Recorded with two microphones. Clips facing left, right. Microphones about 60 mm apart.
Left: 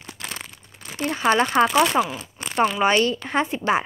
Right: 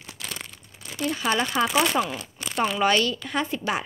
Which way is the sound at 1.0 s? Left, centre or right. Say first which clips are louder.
Left 5 dB; left.